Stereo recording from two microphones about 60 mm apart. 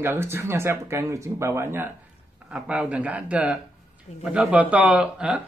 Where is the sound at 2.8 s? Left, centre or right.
Right.